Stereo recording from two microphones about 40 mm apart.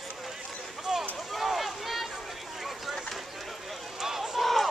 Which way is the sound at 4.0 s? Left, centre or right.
Centre.